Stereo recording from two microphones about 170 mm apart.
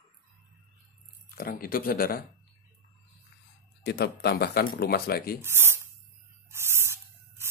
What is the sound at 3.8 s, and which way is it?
Speech, 70° left (ahead or behind).